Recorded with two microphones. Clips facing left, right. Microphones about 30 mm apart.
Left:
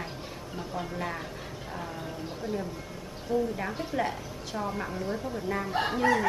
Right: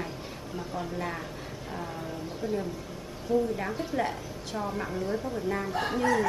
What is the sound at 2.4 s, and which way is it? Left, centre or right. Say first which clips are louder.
Speech: right 2 dB; left.